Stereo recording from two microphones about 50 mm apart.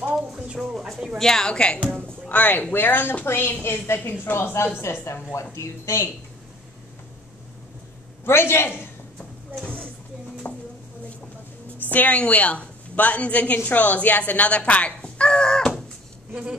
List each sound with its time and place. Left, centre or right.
0.1 s a sound: centre
0.6 s a woman's voice: centre
2.2 s a woman's voice: left
5.0 s speech: left
8.3 s a man's voice: left
10.4 s a sound: left
11.9 s a woman's voice: left; by 15.7 s centre